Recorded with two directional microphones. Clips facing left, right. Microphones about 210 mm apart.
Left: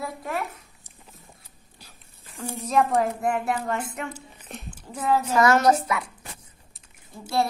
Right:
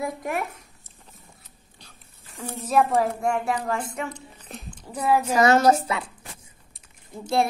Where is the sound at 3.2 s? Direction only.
Centre (ahead or behind).